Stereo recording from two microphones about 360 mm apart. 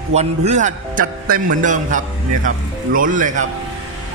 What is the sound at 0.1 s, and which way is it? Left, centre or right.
A man's voice, centre.